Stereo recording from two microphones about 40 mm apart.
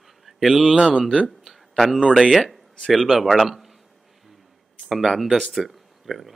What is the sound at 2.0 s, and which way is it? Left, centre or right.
Speech, centre.